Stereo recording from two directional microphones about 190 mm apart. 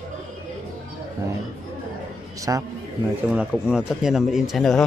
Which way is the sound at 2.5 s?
15° right (ahead or behind).